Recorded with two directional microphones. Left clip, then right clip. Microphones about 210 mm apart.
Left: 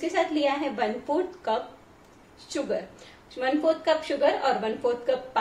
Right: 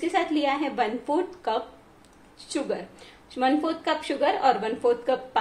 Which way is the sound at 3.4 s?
40° right (ahead or behind).